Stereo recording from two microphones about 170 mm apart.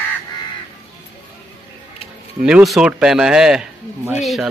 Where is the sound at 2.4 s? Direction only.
5° right (ahead or behind).